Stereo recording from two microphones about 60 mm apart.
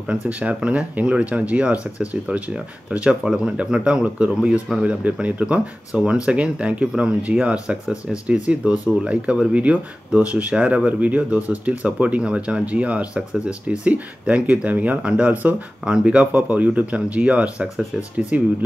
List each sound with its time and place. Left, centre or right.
0.1 s speech: right